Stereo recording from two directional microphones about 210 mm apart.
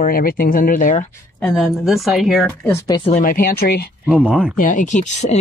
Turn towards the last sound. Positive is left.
turn(degrees=35)  # may be behind; listen again after turning